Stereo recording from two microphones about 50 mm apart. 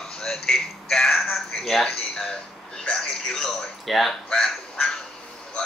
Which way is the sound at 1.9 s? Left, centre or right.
Centre.